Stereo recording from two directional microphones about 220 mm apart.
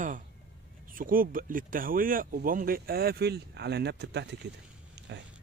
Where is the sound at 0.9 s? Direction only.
40° right (ahead or behind).